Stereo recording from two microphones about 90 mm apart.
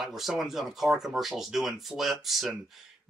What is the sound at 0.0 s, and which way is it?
Speech, centre (ahead or behind).